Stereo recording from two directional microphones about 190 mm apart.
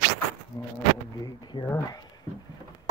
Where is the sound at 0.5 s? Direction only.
20° left (ahead or behind).